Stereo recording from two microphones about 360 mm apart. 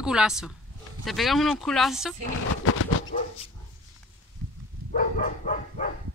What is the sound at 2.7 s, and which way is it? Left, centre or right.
Dog, left.